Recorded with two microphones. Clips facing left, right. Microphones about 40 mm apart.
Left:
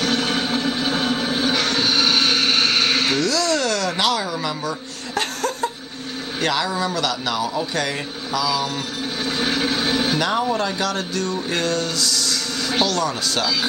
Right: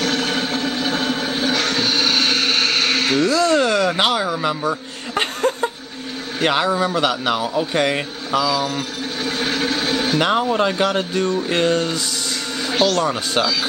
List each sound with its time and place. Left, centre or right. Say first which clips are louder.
0.0 s a sound: right 1 dB; centre
3.2 s a sound: right 4 dB; right
6.4 s a man's voice: right 4 dB; right
9.2 s vehicle: right 1 dB; centre
10.1 s speech: right 3 dB; right
12.7 s speech: right 4 dB; centre
13.0 s speech: right 3 dB; right